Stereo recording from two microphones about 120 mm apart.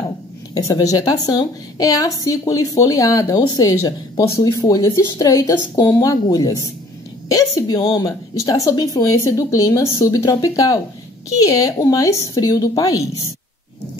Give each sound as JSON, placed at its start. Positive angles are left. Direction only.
{"t": 0.6, "sound": "a woman's voice", "side_deg": 30}